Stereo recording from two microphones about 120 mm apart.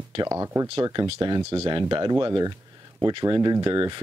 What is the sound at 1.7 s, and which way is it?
Speech, 40° right (ahead or behind).